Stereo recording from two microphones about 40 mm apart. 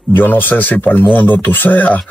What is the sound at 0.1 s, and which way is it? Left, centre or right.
Speech, left.